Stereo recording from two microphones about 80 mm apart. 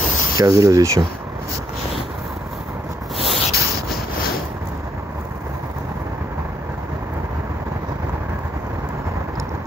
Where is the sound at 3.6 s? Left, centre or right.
Right.